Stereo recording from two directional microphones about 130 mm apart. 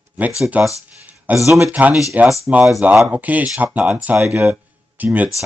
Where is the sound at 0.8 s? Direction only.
10° right (ahead or behind).